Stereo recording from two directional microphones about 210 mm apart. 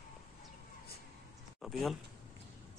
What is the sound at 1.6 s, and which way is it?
Speech, centre (ahead or behind).